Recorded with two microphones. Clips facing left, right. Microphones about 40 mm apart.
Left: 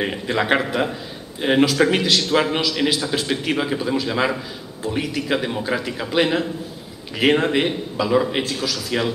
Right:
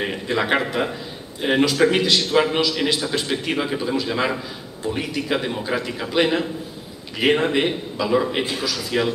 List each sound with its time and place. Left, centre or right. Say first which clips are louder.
0.0 s a man's voice: left 1 dB; centre
8.4 s a man's voice: even; centre
8.9 s speech: right 1 dB; centre